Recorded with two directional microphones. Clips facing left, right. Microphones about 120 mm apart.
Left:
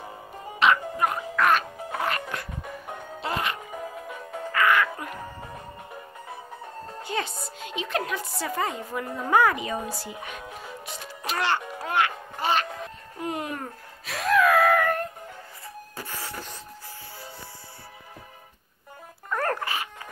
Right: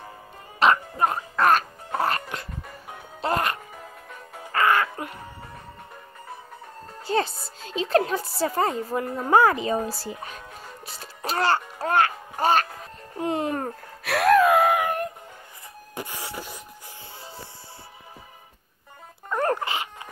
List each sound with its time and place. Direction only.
0.6 s music: 35° right (ahead or behind)
3.7 s music: 5° left (ahead or behind)
4.5 s music: 35° right (ahead or behind)
7.1 s music: 35° right (ahead or behind)
7.6 s a woman's voice: 35° right (ahead or behind)
10.9 s music: 35° right (ahead or behind)
13.2 s music: 30° right (ahead or behind)
14.0 s gasp: 65° right (ahead or behind)
14.4 s dog: 25° right (ahead or behind)
16.0 s a sound: 15° right (ahead or behind)
19.2 s a sound: 20° right (ahead or behind)